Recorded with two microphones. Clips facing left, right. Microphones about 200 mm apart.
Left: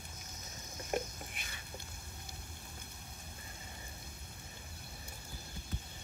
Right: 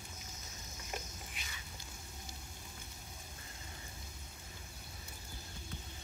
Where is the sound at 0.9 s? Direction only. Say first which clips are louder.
Left 9 dB; 55° left (ahead or behind).